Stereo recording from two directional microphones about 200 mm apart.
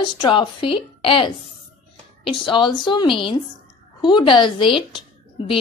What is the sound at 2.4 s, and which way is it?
A woman's voice, 25° left (ahead or behind).